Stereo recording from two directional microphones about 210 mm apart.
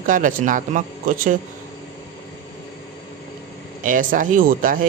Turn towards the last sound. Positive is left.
turn(degrees=-40)  # may be behind; listen again after turning